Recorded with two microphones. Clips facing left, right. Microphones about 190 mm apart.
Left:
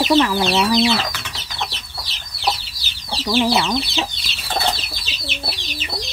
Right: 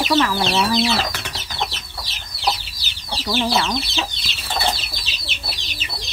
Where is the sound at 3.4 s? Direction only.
20° left (ahead or behind).